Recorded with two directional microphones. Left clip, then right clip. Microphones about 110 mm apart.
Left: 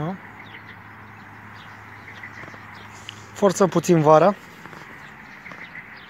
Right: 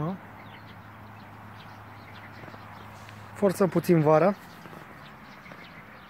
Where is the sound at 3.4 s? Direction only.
20° left (ahead or behind).